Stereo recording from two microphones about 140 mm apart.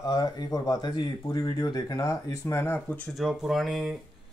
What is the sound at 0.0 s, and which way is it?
Speech, 25° left (ahead or behind).